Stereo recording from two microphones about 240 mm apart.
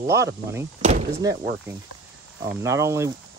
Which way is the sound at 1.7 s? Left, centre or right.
Centre.